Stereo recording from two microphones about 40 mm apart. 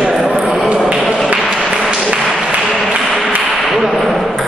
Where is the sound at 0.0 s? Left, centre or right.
Right.